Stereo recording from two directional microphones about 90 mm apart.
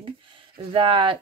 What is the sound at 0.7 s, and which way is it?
Speech, 75° right (ahead or behind).